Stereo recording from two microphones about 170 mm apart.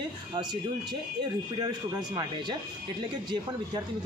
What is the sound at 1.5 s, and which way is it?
Speech, 25° right (ahead or behind).